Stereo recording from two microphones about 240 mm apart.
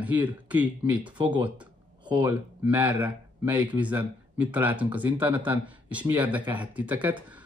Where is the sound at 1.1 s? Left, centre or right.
Centre.